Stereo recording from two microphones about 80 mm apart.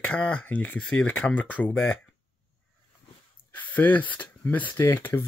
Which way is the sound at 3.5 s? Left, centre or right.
Left.